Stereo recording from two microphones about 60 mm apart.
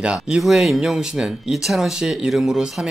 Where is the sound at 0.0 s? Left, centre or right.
Centre.